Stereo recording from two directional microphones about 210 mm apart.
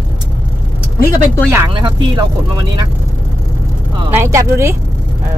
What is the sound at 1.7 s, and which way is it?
Speech, 20° right (ahead or behind).